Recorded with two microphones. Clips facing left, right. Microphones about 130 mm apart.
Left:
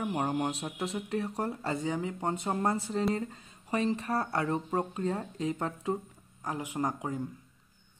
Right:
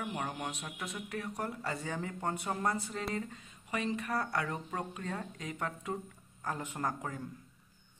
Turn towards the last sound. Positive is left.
turn(degrees=15)  # may be behind; listen again after turning